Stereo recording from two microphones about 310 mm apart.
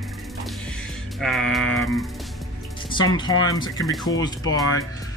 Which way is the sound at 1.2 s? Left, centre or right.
Centre.